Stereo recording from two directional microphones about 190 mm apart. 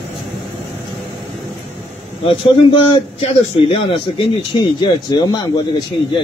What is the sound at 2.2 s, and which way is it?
A man's voice, 30° left (ahead or behind).